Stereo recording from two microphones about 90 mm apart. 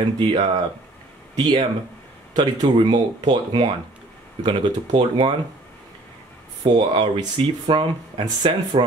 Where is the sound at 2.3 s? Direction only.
50° right (ahead or behind).